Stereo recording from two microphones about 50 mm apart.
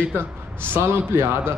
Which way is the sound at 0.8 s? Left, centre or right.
Right.